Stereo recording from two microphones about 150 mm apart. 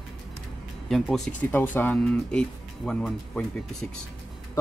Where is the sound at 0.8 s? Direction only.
Centre (ahead or behind).